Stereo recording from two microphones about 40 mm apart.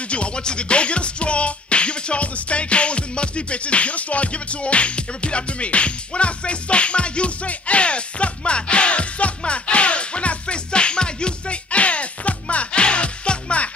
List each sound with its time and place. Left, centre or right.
0.1 s music: left